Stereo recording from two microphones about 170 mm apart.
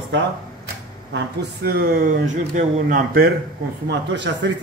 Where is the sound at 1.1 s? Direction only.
75° right (ahead or behind); by 3.3 s 55° right (ahead or behind).